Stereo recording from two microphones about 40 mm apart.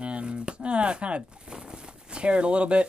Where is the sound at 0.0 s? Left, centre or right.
Right.